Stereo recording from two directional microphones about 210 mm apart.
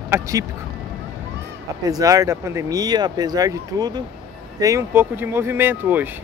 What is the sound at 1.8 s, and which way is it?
Speech, 15° right (ahead or behind).